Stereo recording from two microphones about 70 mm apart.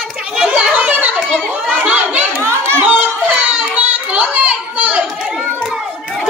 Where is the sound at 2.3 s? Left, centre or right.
Right.